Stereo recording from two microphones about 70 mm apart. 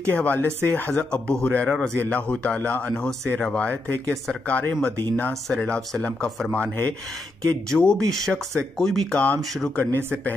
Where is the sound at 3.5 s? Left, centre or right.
Left.